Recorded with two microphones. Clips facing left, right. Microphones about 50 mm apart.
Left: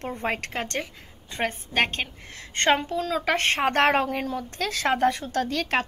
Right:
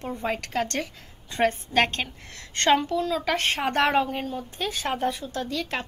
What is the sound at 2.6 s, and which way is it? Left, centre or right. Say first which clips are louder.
A woman's voice: right 1 dB; left.